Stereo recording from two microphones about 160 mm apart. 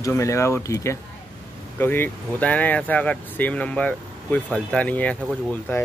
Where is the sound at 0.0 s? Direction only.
20° left (ahead or behind).